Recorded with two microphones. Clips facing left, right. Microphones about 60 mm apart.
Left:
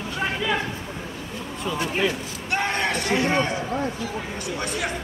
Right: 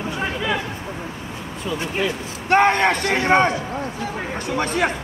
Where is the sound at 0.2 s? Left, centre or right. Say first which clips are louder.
Even; centre.